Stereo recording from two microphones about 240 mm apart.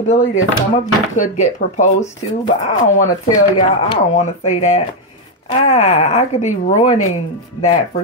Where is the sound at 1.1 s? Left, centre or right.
Left.